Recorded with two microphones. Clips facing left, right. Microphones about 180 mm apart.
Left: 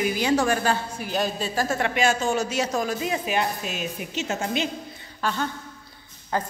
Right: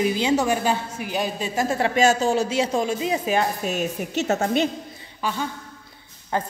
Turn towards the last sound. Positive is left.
turn(degrees=-20)  # may be behind; listen again after turning